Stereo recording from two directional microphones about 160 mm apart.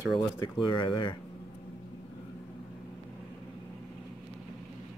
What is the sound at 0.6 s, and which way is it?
Speech, 30° left (ahead or behind).